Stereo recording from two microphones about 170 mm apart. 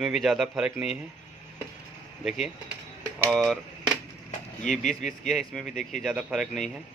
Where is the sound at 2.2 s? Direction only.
Centre (ahead or behind).